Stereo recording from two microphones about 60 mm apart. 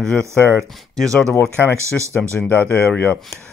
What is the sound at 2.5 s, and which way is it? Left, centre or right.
Speech, left.